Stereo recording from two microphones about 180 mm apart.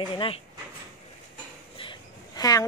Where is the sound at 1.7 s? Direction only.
25° left (ahead or behind).